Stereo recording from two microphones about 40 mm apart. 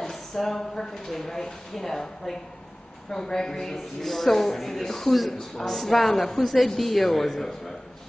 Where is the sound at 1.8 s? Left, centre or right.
Centre.